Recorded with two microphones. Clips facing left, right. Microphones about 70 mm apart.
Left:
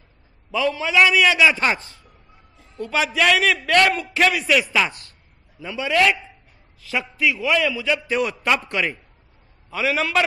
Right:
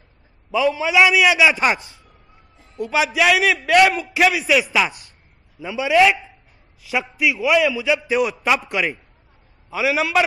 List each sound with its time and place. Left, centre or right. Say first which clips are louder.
0.5 s a man's voice: right 3 dB; centre